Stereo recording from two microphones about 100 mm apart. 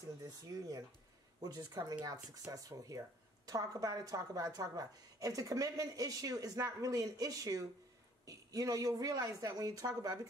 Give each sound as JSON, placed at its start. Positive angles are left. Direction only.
{"t": 0.2, "sound": "speech", "side_deg": -40}